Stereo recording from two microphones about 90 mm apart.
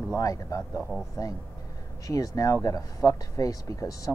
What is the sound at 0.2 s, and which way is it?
Speech, 40° left (ahead or behind).